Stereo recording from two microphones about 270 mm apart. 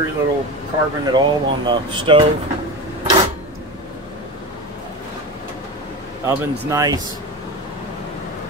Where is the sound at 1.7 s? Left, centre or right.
Centre.